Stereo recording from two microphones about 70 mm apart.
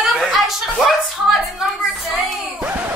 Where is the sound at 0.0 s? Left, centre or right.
Centre.